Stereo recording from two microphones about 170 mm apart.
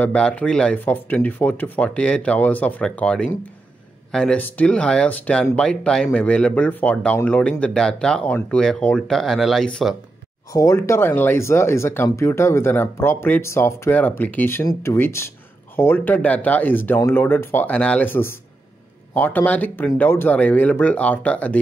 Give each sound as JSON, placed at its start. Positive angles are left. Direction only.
{"t": 0.0, "sound": "speech", "side_deg": 5}
{"t": 10.5, "sound": "speech", "side_deg": 20}